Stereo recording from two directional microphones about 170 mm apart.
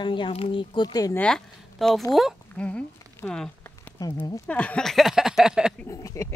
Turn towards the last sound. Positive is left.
turn(degrees=20)  # may be behind; listen again after turning